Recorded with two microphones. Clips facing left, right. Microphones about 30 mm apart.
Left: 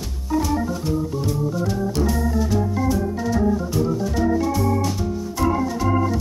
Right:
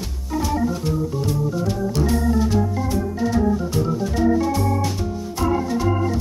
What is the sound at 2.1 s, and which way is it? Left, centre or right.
Organ, right.